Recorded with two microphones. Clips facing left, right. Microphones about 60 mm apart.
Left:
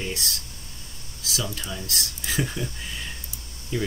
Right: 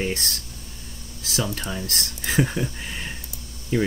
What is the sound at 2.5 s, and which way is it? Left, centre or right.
Speech, right.